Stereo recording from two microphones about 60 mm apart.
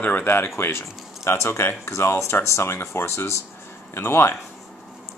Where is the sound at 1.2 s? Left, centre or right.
Left.